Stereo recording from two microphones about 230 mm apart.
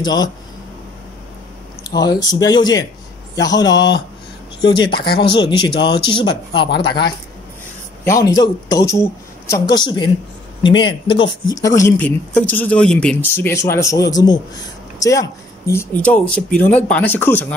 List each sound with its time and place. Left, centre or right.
0.0 s speech: centre
2.0 s speech: centre